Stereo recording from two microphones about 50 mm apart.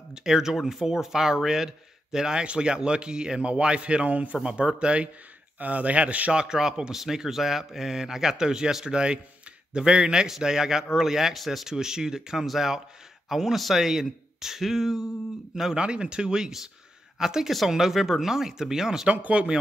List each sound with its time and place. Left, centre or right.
0.1 s a man's voice: centre; by 6.3 s right
6.3 s a man's voice: centre
19.0 s a man's voice: right